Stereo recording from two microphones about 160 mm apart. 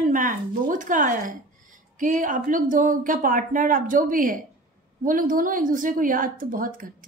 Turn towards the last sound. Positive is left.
turn(degrees=-60)  # may be behind; listen again after turning